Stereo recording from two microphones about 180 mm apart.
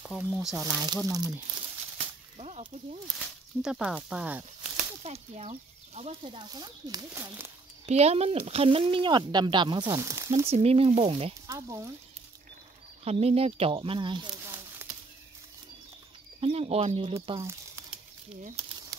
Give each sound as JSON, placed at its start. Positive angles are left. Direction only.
{"t": 0.3, "sound": "speech", "side_deg": -5}
{"t": 0.8, "sound": "speech", "side_deg": -20}
{"t": 2.3, "sound": "whip", "side_deg": -35}
{"t": 3.2, "sound": "speech", "side_deg": -5}
{"t": 5.0, "sound": "speech", "side_deg": -35}
{"t": 7.8, "sound": "speech", "side_deg": -35}
{"t": 10.5, "sound": "speech", "side_deg": -35}
{"t": 11.4, "sound": "speech", "side_deg": -15}
{"t": 13.0, "sound": "speech", "side_deg": -35}
{"t": 14.8, "sound": "bird flight", "side_deg": -15}
{"t": 16.3, "sound": "speech", "side_deg": -35}